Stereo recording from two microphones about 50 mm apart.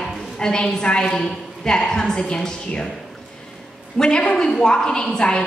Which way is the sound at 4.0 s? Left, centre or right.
Centre.